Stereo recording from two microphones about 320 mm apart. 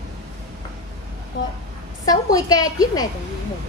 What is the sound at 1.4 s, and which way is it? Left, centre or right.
Speech, left.